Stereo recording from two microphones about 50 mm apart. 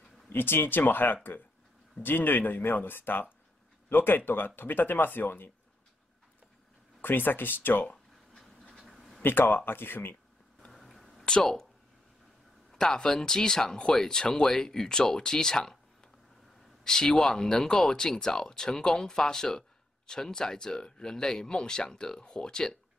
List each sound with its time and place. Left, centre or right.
0.3 s speech: left
7.0 s speech: left
8.7 s a sound: centre
9.2 s speech: left
10.7 s a sound: centre
12.7 s speech: centre
16.8 s speech: centre